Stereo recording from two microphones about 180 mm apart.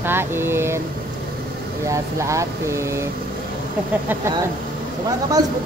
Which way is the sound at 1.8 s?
15° right (ahead or behind).